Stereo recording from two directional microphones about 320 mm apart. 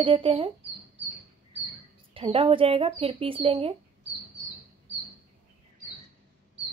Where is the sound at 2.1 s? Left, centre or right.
Centre.